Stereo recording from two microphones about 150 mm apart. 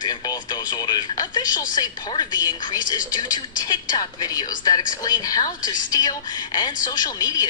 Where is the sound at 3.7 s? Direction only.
25° left (ahead or behind).